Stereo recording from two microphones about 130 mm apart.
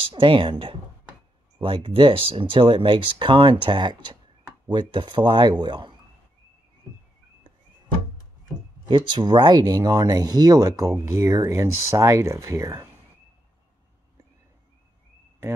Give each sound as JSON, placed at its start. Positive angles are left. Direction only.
{"t": 0.0, "sound": "speech", "side_deg": -45}
{"t": 8.8, "sound": "speech", "side_deg": -35}